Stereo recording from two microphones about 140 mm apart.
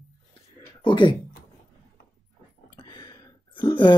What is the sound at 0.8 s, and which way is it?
Speech, 35° left (ahead or behind).